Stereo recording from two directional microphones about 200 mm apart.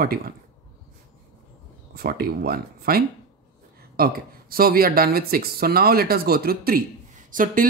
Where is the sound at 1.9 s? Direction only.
50° right (ahead or behind).